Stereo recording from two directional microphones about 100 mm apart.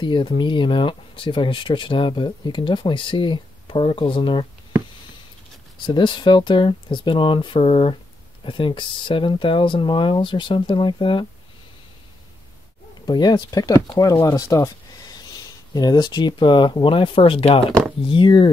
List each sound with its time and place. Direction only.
0.0 s speech: 55° left (ahead or behind)
5.8 s speech: 50° left (ahead or behind)
13.0 s speech: 45° left (ahead or behind); by 17.7 s 70° left (ahead or behind)
18.0 s speech: 55° left (ahead or behind)